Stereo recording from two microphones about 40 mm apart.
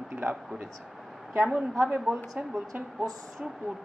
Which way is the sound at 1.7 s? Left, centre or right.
Centre.